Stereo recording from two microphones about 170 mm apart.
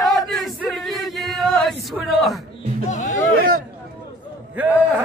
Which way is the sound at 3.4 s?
55° right (ahead or behind).